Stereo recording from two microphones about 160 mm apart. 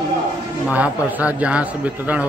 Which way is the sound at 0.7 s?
10° right (ahead or behind).